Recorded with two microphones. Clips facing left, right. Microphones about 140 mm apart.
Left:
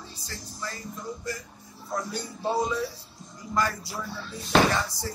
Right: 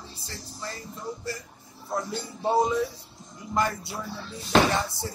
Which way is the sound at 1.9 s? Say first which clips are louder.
Right 1 dB; 25° right (ahead or behind).